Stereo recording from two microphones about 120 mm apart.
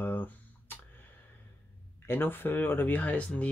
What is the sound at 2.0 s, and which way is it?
Speech, 20° left (ahead or behind).